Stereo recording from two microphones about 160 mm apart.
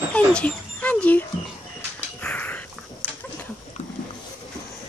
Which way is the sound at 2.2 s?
10° left (ahead or behind).